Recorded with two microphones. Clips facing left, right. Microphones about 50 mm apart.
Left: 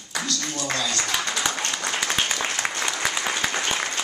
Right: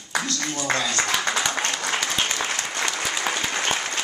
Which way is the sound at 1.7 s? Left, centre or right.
Centre.